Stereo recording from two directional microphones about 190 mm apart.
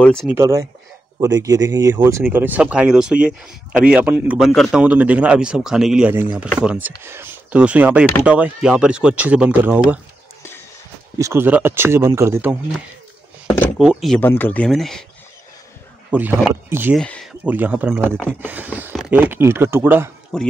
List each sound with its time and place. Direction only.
0.0 s speech: 5° left (ahead or behind)
0.3 s speech: 15° right (ahead or behind)
11.1 s speech: 15° right (ahead or behind)
13.7 s speech: centre (ahead or behind)
16.1 s speech: 10° right (ahead or behind)
17.0 s a sound: 5° left (ahead or behind)
17.5 s speech: 10° right (ahead or behind)
18.0 s speech: 5° left (ahead or behind)
18.4 s speech: 10° right (ahead or behind)
20.3 s speech: 5° left (ahead or behind)